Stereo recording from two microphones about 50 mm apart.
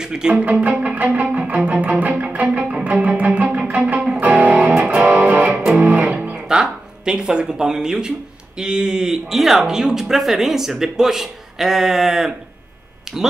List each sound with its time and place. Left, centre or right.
0.0 s speech: centre
0.4 s music: right
6.5 s a sound: centre
8.5 s speech: centre